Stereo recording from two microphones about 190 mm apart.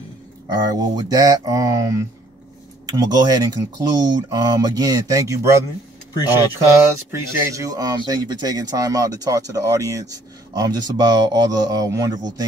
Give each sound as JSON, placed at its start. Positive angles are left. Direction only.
{"t": 0.5, "sound": "speech", "side_deg": -20}
{"t": 7.1, "sound": "speech", "side_deg": -20}